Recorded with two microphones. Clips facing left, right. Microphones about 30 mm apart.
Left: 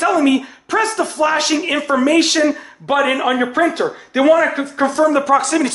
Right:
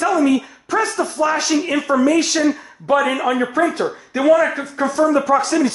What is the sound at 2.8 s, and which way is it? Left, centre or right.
Speech, left.